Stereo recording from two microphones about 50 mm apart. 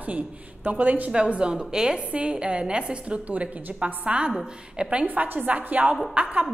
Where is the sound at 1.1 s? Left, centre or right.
Centre.